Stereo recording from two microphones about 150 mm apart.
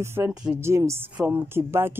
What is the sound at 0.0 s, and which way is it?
A woman's voice, 15° right (ahead or behind).